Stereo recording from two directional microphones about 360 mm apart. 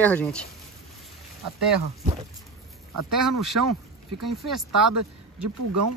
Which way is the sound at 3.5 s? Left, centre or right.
Right.